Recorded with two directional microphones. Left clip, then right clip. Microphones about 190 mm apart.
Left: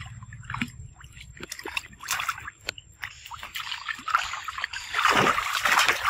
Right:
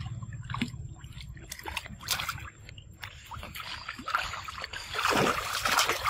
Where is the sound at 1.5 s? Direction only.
20° right (ahead or behind).